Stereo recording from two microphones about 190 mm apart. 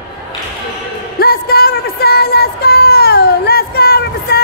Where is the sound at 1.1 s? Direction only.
55° left (ahead or behind).